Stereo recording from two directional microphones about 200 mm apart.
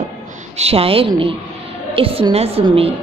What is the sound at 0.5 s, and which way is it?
A woman's voice, 30° right (ahead or behind).